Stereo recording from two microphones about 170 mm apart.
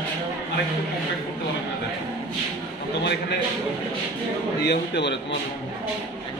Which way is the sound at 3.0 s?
85° left.